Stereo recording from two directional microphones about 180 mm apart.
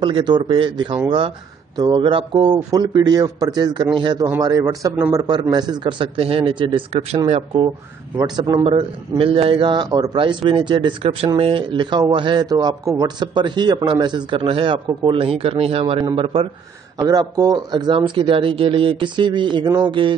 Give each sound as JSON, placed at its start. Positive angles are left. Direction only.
{"t": 0.0, "sound": "a man's voice", "side_deg": -25}